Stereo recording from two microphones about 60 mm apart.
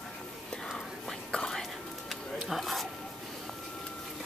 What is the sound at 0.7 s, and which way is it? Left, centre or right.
Whispering, centre.